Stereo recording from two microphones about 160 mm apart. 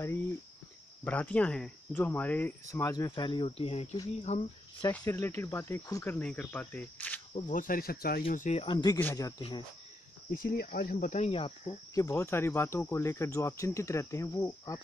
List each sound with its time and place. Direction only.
1.0 s speech: 10° left (ahead or behind); by 4.5 s 40° left (ahead or behind)
5.0 s speech: 20° left (ahead or behind)
7.4 s speech: 55° left (ahead or behind)
8.3 s speech: 55° left (ahead or behind)
8.5 s speech: 30° left (ahead or behind)
10.3 s speech: 65° left (ahead or behind); by 11.7 s 35° left (ahead or behind)
11.9 s speech: 20° left (ahead or behind)